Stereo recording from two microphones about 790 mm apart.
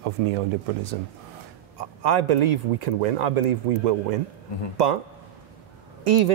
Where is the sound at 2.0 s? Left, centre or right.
Right.